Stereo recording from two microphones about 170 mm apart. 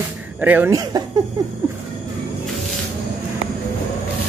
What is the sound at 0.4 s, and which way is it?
Speech, 10° right (ahead or behind).